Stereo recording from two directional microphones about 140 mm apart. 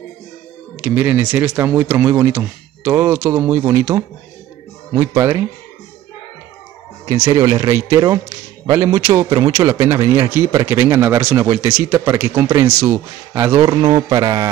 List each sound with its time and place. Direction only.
0.7 s a man's voice: 10° right (ahead or behind)
7.3 s a man's voice: 25° right (ahead or behind)
11.4 s a man's voice: 25° right (ahead or behind)
13.6 s a man's voice: 30° right (ahead or behind)